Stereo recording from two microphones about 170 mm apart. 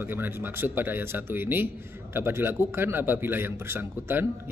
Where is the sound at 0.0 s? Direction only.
10° right (ahead or behind).